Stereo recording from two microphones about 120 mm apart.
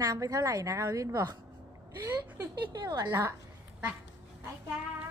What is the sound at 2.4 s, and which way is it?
Speech, 30° right (ahead or behind).